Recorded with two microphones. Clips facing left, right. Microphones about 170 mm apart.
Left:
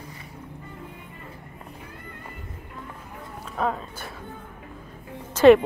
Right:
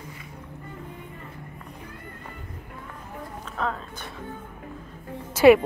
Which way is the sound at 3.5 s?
10° left (ahead or behind).